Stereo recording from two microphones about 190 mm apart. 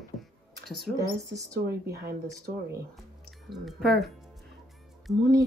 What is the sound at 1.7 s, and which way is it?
Speech, 60° right (ahead or behind).